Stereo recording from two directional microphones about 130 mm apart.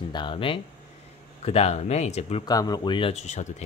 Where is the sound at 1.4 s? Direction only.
50° left (ahead or behind).